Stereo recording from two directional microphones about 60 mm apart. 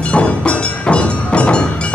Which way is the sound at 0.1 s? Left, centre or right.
Centre.